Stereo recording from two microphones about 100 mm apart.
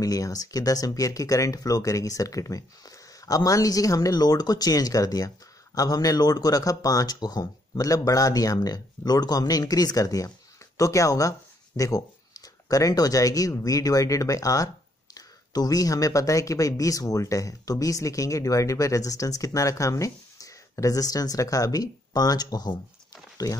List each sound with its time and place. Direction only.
0.0 s speech: 35° left (ahead or behind)